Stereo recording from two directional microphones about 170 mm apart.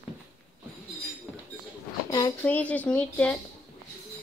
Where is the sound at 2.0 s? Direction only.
25° left (ahead or behind).